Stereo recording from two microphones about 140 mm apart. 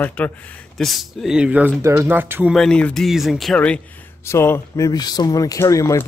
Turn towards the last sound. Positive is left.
turn(degrees=20)  # may be behind; listen again after turning